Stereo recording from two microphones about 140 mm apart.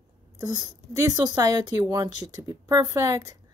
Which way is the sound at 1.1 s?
25° right (ahead or behind).